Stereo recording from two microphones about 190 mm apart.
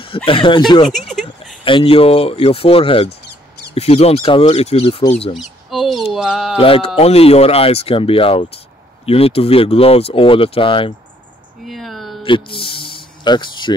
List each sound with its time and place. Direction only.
0.0 s speech: 25° left (ahead or behind)
0.8 s speech: centre (ahead or behind)
1.6 s speech: 25° left (ahead or behind)
5.4 s speech: centre (ahead or behind)
6.6 s speech: 30° left (ahead or behind)
11.6 s a sound: centre (ahead or behind)
12.2 s speech: 25° left (ahead or behind)